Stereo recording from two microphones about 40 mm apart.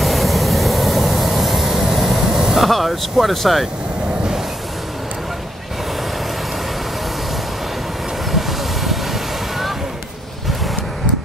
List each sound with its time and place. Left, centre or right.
0.0 s vehicle: centre
1.9 s air conditioning: centre
8.3 s vehicle: centre